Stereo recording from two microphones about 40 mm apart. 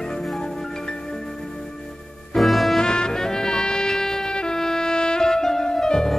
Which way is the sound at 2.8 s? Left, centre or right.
Centre.